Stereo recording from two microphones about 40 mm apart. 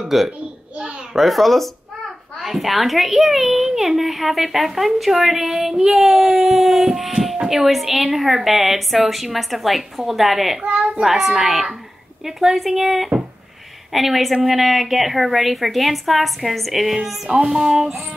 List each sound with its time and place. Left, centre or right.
0.0 s a child's voice: centre
6.4 s a sound: centre
7.4 s a child's voice: centre
10.6 s a child's voice: right
11.1 s a child's voice: centre
17.3 s a child's voice: right
17.6 s speech: centre